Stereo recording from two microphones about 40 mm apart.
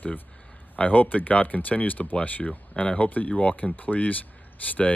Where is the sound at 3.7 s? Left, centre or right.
Left.